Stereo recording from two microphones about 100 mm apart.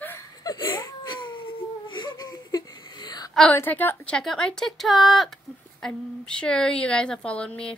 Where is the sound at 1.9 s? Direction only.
45° left (ahead or behind).